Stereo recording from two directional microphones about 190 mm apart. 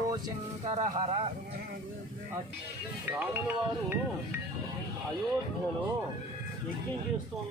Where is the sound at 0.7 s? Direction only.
35° right (ahead or behind).